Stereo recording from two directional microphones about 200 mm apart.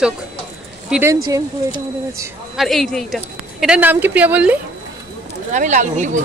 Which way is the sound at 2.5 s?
Centre (ahead or behind).